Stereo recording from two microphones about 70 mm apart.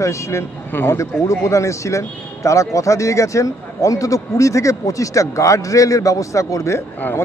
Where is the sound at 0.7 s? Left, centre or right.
Left.